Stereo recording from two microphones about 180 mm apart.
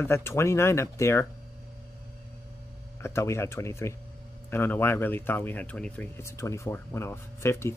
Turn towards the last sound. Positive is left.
turn(degrees=15)  # may be behind; listen again after turning